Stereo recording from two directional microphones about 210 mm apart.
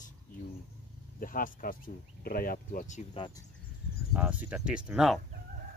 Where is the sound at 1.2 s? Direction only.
40° left (ahead or behind).